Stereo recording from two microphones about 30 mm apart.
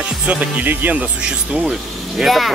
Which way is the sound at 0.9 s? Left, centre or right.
Right.